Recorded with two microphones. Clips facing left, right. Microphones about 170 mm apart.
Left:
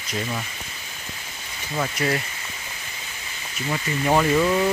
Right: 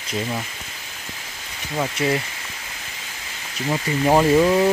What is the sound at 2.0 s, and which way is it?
Speech, 30° right (ahead or behind).